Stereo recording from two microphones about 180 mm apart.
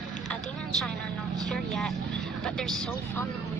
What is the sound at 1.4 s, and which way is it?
Speech, 5° left (ahead or behind).